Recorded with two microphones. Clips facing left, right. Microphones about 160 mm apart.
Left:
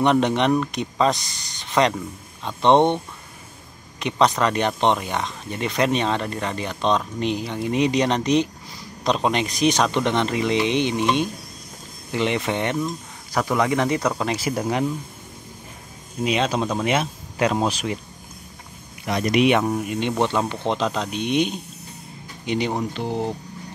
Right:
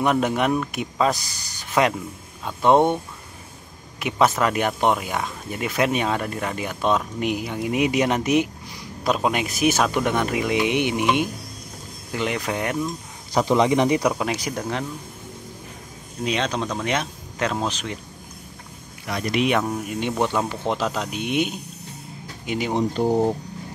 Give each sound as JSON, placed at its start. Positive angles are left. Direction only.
{"t": 0.0, "sound": "speech", "side_deg": -5}
{"t": 4.0, "sound": "speech", "side_deg": -5}
{"t": 12.1, "sound": "speech", "side_deg": 0}
{"t": 13.3, "sound": "speech", "side_deg": -20}
{"t": 16.3, "sound": "speech", "side_deg": 5}
{"t": 19.0, "sound": "speech", "side_deg": 20}
{"t": 19.5, "sound": "speech", "side_deg": 5}
{"t": 20.0, "sound": "speech", "side_deg": -10}
{"t": 22.9, "sound": "speech", "side_deg": -45}